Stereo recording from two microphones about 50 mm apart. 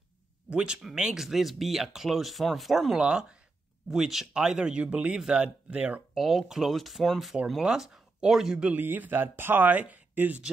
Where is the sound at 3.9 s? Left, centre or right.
Centre.